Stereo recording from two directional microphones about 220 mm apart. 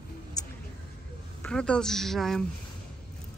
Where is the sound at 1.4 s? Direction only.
5° left (ahead or behind).